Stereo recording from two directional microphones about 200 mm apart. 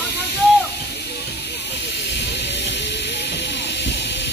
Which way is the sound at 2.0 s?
60° left (ahead or behind).